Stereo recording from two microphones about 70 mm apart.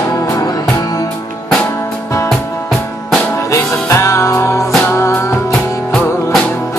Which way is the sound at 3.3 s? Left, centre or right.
Left.